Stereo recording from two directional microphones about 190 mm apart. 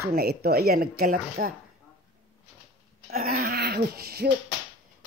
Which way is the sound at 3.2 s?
50° right (ahead or behind).